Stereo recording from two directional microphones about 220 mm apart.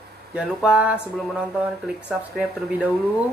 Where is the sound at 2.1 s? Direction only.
5° right (ahead or behind).